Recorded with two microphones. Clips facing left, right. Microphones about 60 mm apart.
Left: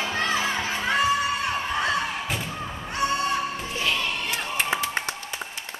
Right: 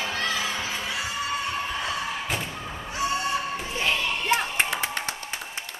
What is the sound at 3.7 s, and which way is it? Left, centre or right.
Crowd, right.